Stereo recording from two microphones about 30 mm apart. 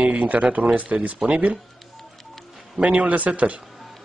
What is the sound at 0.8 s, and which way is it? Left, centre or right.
Speech, right.